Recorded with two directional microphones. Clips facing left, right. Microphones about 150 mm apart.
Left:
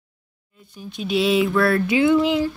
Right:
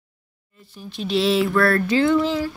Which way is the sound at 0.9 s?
Centre (ahead or behind).